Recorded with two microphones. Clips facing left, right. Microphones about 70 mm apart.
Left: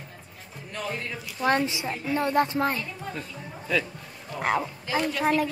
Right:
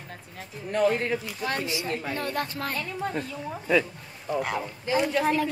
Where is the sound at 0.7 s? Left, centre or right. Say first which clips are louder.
Right 9 dB; right.